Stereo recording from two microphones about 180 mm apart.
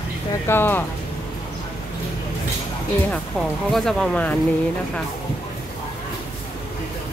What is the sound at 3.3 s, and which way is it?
Speech, centre (ahead or behind).